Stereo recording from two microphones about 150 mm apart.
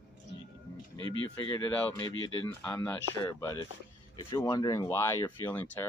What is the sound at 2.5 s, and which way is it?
Speech, 15° left (ahead or behind).